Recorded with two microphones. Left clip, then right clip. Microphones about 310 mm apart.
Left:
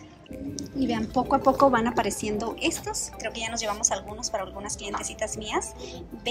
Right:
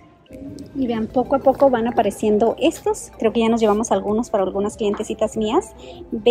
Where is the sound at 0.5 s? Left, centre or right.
Centre.